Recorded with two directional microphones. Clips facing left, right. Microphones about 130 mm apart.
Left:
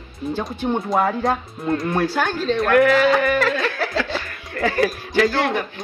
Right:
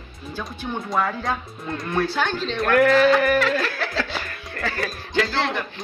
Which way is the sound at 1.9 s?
10° left (ahead or behind).